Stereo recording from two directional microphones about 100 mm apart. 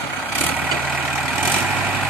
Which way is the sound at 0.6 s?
15° right (ahead or behind).